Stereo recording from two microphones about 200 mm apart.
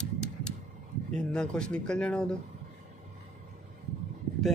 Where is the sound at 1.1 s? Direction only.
5° left (ahead or behind).